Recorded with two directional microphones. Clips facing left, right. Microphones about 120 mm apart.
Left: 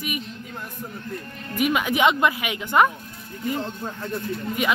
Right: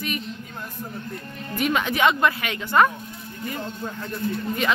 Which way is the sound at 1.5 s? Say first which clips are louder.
Left 1 dB; 10° left (ahead or behind).